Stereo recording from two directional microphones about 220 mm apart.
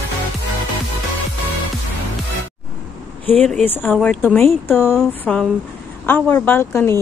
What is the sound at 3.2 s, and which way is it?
Speech, 5° left (ahead or behind).